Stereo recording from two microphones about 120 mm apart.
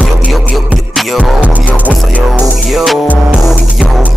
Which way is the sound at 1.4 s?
10° right (ahead or behind).